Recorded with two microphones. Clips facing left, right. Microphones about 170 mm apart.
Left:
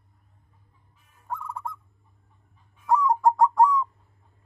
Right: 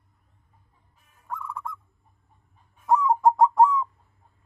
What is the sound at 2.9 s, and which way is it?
Bird, 20° right (ahead or behind).